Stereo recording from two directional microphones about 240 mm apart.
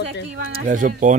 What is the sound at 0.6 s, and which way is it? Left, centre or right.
Speech, right.